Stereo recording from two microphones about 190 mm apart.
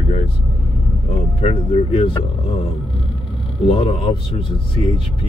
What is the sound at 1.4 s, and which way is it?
Speech, 30° left (ahead or behind).